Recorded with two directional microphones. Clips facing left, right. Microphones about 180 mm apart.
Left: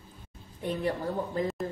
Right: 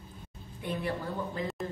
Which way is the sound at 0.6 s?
40° left (ahead or behind).